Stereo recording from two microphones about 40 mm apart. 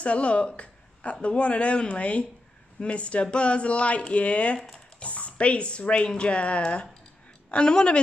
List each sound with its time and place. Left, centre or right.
0.0 s speech: left